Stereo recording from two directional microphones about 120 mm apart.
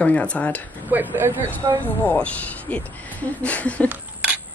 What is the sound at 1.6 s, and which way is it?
Speech, 30° right (ahead or behind).